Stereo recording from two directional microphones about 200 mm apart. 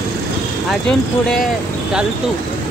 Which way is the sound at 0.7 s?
5° left (ahead or behind).